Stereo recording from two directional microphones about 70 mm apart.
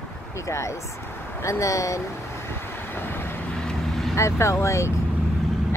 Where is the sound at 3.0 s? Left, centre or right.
Left.